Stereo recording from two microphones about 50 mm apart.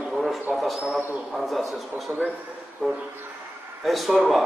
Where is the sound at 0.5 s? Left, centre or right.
Centre.